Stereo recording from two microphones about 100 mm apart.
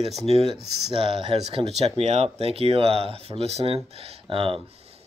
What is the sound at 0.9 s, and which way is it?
Speech, 60° right (ahead or behind).